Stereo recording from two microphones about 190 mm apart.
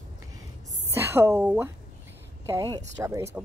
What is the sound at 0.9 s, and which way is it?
Speech, 10° right (ahead or behind).